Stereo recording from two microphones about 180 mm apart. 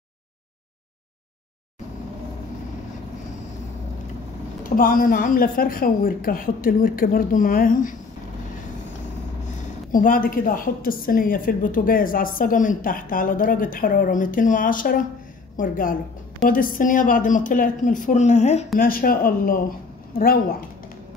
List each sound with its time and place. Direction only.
4.6 s a woman's voice: 50° left (ahead or behind)
9.9 s a woman's voice: 50° left (ahead or behind)
18.8 s a woman's voice: 50° left (ahead or behind)